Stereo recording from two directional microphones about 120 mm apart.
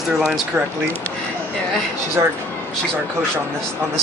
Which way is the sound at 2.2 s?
30° right (ahead or behind).